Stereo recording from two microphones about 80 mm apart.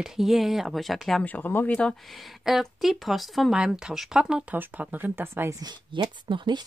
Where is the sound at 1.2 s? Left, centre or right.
Left.